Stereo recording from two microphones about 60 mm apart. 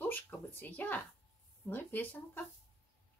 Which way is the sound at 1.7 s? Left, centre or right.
Left.